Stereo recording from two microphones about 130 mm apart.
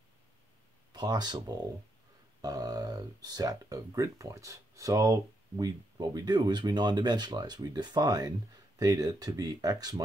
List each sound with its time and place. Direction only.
0.9 s speech: 30° right (ahead or behind)